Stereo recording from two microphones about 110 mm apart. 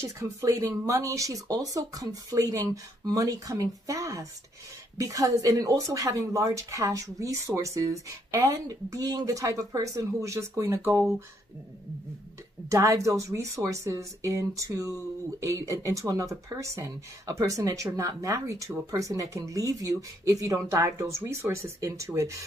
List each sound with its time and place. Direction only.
0.0 s speech: 25° right (ahead or behind)
12.6 s speech: 30° right (ahead or behind)